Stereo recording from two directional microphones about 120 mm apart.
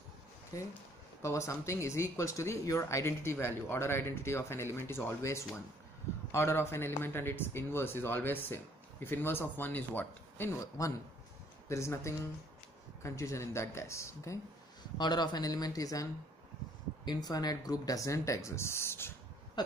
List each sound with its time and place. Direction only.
0.5 s speech: 25° left (ahead or behind)